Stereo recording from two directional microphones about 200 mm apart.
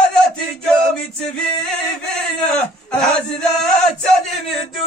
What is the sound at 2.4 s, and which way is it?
Chant, 5° left (ahead or behind).